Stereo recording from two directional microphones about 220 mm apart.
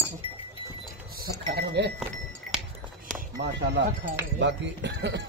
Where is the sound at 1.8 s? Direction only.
55° right (ahead or behind).